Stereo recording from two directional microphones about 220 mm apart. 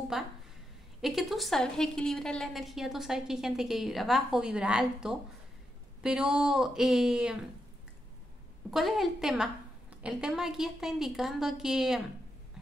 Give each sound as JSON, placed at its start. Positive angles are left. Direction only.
{"t": 1.0, "sound": "a woman's voice", "side_deg": 0}
{"t": 8.6, "sound": "a woman's voice", "side_deg": 0}